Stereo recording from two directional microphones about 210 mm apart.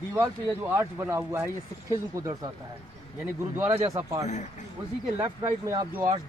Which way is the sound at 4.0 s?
15° right (ahead or behind).